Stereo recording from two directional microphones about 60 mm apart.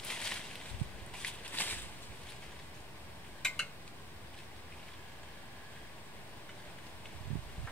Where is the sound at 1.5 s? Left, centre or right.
Left.